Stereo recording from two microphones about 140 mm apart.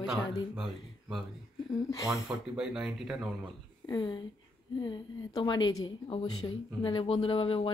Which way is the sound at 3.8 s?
30° left (ahead or behind).